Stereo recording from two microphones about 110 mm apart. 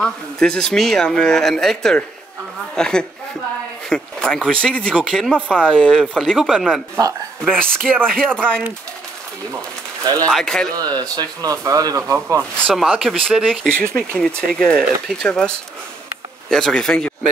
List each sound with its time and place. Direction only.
0.0 s speech: 10° left (ahead or behind)
10.2 s speech: 5° left (ahead or behind)
10.8 s speech: 35° right (ahead or behind)
13.0 s speech: centre (ahead or behind)